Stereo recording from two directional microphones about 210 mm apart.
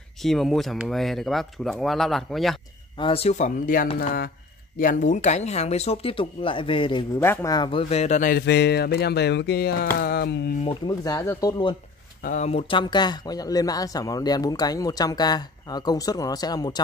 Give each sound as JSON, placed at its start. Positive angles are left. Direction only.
{"t": 0.2, "sound": "speech", "side_deg": 0}
{"t": 3.0, "sound": "speech", "side_deg": 25}
{"t": 10.9, "sound": "speech", "side_deg": 15}
{"t": 12.2, "sound": "speech", "side_deg": 35}